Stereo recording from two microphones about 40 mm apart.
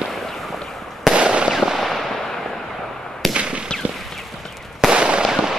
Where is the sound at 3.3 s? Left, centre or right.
Right.